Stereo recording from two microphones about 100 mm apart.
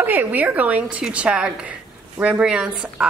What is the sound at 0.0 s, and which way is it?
A woman's voice, 20° right (ahead or behind).